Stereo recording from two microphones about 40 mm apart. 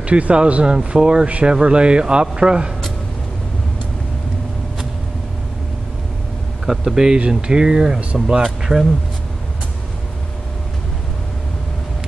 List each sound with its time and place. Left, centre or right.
0.0 s speech: right
6.6 s speech: centre
7.0 s speech: centre